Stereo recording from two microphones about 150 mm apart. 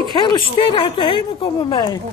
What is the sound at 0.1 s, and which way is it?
Speech, 30° left (ahead or behind).